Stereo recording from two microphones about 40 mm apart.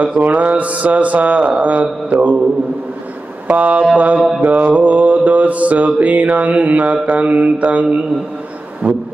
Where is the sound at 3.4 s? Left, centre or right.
Right.